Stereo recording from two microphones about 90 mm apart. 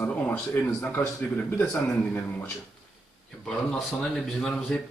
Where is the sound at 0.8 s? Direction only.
15° left (ahead or behind).